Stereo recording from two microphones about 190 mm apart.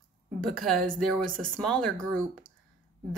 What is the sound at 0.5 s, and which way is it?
Speech, centre (ahead or behind).